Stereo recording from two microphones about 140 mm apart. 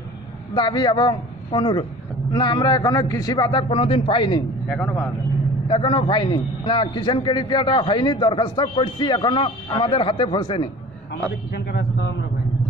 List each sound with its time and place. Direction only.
0.6 s a man's voice: 35° left (ahead or behind)
3.6 s a man's voice: 40° left (ahead or behind)
4.6 s a man's voice: 10° left (ahead or behind)
5.7 s a man's voice: 40° left (ahead or behind)